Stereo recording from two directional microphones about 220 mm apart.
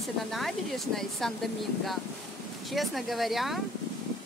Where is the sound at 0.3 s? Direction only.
Centre (ahead or behind).